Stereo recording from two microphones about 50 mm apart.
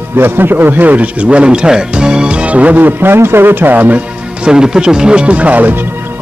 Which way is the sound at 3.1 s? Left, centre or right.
Right.